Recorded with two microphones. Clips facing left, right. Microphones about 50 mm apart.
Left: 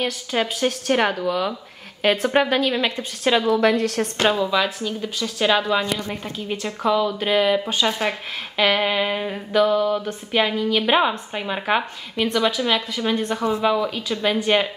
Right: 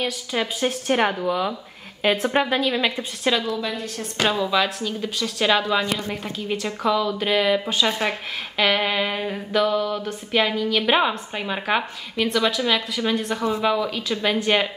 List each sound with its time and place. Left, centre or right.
0.0 s a woman's voice: centre
0.6 s a woman's voice: centre
2.3 s a sound: centre
3.4 s a woman's voice: left
3.7 s a woman's voice: left
4.2 s a woman's voice: centre
4.5 s a sound: centre
5.9 s a woman's voice: centre
6.3 s a sound: centre